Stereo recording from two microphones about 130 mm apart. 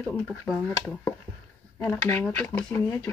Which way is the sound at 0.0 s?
10° left (ahead or behind).